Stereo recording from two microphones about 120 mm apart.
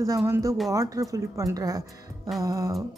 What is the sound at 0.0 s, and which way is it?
A woman's voice, 25° right (ahead or behind).